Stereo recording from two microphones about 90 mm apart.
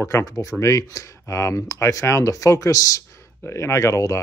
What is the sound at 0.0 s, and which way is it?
Speech, 40° left (ahead or behind).